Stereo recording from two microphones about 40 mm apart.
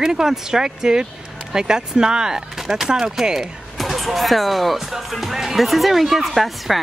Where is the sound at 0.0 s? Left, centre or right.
Centre.